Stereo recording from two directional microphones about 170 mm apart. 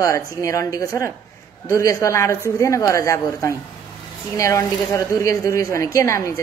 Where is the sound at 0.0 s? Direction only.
15° left (ahead or behind).